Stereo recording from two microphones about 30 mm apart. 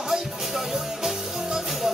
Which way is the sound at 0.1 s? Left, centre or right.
Centre.